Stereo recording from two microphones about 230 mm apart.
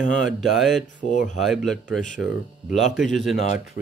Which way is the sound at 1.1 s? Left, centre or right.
Left.